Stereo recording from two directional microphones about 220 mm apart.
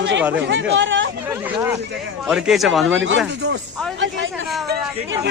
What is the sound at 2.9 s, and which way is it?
Speech, 60° right (ahead or behind).